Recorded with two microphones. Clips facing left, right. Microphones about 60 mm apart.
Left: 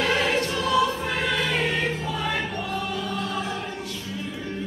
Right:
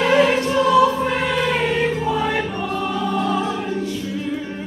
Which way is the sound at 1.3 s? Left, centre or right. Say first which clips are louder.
Right 5 dB; centre.